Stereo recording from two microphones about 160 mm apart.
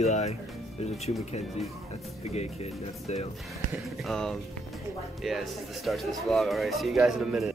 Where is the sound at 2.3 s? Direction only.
40° left (ahead or behind).